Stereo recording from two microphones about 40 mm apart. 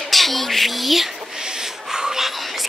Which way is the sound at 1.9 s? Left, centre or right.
Centre.